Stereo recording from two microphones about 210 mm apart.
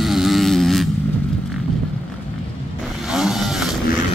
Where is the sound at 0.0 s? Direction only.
Centre (ahead or behind).